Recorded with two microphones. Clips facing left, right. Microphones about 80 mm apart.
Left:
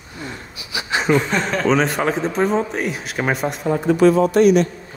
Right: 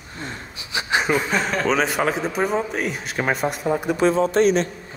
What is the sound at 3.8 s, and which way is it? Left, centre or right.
Speech, right.